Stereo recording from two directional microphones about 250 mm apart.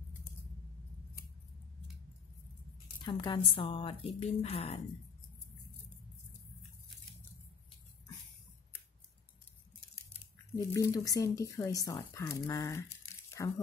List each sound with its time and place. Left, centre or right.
3.1 s a woman's voice: centre
10.7 s speech: centre